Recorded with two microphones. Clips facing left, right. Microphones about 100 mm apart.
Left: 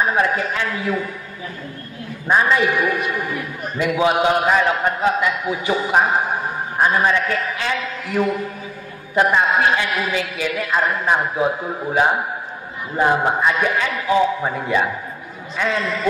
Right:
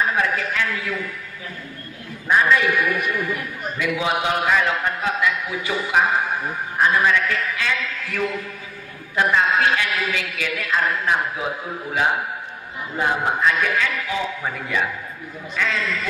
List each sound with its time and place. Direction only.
0.0 s a man's voice: 25° left (ahead or behind)
2.2 s a man's voice: 25° left (ahead or behind)
9.3 s a man's voice: 20° left (ahead or behind)
12.9 s a man's voice: 25° left (ahead or behind)